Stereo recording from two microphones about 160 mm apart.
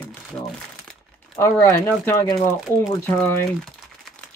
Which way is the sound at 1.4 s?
20° left (ahead or behind).